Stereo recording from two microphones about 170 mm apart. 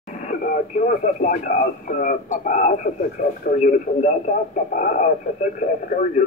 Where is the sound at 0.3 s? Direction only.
50° left (ahead or behind).